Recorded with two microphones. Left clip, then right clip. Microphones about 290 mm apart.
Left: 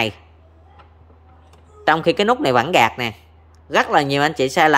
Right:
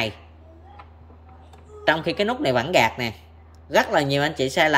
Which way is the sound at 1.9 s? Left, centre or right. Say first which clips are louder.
Left 6 dB; centre.